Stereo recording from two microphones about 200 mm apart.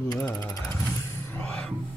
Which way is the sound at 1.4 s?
5° left (ahead or behind).